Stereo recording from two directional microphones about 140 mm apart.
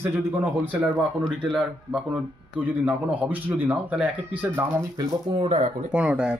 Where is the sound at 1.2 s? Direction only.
5° right (ahead or behind).